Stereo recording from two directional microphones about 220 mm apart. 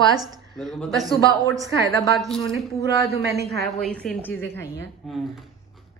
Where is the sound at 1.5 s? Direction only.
15° right (ahead or behind).